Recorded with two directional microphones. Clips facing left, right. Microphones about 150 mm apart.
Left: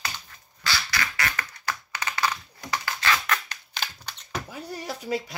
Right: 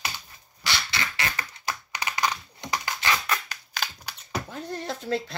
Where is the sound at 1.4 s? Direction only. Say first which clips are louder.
Left 1 dB; 15° right (ahead or behind).